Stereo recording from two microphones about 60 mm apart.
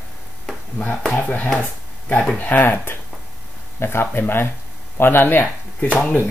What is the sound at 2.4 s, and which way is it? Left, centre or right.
Speech, left.